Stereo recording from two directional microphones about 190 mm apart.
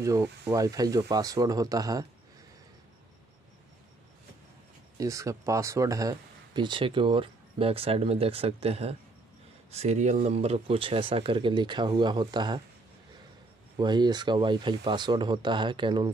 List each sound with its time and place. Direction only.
0.0 s speech: 15° right (ahead or behind)
4.9 s speech: 15° right (ahead or behind)
13.7 s speech: 25° right (ahead or behind)